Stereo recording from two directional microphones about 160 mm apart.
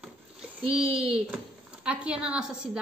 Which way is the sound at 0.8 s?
35° right (ahead or behind).